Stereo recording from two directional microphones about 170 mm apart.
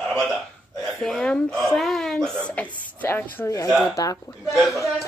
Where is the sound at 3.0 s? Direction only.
10° left (ahead or behind).